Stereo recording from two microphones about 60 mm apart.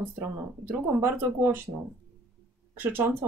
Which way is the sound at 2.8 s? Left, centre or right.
Right.